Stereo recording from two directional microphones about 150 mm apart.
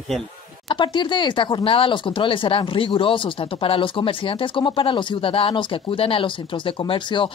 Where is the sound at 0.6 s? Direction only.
30° left (ahead or behind).